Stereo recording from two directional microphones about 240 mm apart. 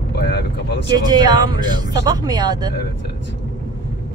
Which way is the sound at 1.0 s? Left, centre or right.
Centre.